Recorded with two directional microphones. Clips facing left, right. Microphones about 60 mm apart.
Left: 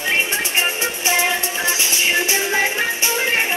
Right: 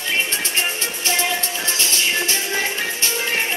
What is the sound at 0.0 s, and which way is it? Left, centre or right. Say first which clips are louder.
Music: left 3 dB; left.